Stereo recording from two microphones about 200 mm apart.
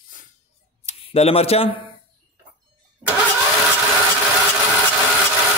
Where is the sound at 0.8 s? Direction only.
30° left (ahead or behind).